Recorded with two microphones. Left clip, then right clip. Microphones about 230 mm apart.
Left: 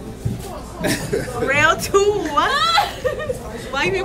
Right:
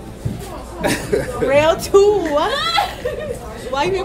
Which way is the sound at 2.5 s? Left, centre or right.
Centre.